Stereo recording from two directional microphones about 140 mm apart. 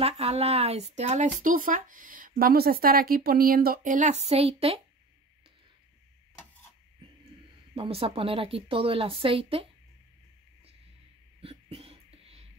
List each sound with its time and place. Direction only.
0.0 s speech: 45° right (ahead or behind)
7.7 s a woman's voice: 40° right (ahead or behind)
11.4 s a sound: 45° right (ahead or behind)